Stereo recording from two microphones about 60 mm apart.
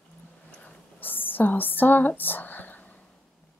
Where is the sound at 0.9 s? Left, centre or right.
Left.